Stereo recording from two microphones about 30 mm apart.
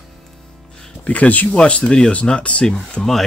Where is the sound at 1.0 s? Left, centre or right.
Left.